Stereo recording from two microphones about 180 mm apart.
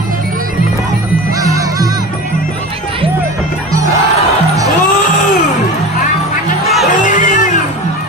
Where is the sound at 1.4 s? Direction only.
20° right (ahead or behind).